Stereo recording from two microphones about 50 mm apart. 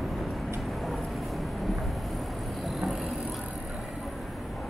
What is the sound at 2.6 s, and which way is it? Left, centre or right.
Vehicle, centre.